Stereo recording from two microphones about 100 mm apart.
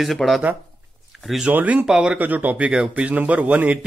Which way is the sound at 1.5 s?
15° right (ahead or behind).